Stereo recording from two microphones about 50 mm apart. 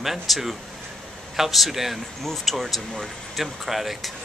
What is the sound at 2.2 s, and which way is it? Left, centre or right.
Speech, centre.